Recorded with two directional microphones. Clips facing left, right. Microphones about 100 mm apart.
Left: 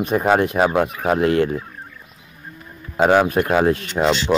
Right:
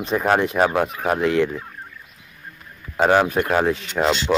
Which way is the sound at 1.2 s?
55° left (ahead or behind).